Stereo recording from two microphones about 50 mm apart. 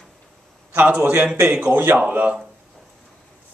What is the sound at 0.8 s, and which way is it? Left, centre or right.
Speech, right.